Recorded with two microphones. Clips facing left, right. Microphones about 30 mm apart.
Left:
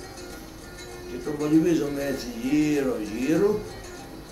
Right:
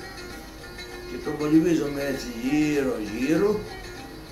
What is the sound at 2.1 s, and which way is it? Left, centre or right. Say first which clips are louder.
Speech: even; centre.